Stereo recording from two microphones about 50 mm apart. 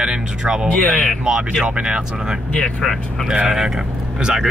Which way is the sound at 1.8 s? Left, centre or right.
Right.